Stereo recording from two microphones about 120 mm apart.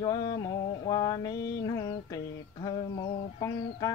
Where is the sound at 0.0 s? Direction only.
30° left (ahead or behind).